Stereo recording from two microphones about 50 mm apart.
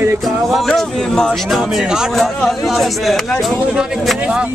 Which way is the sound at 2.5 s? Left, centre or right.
Centre.